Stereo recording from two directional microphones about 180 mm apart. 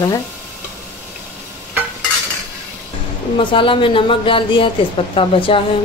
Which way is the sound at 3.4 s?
30° left (ahead or behind).